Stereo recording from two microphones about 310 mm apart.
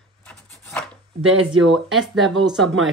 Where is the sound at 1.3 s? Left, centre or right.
Right.